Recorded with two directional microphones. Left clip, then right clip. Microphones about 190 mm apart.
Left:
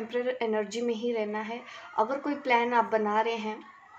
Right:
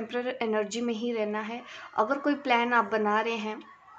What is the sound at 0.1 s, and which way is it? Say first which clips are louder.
A woman's voice: left 1 dB; 30° right (ahead or behind).